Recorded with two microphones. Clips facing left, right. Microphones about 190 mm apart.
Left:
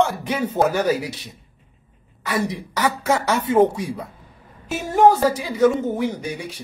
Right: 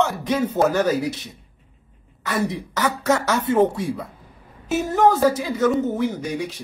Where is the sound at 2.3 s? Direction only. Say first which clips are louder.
Even; 15° left (ahead or behind).